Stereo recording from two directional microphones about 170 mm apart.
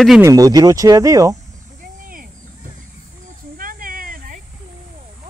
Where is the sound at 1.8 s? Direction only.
55° right (ahead or behind).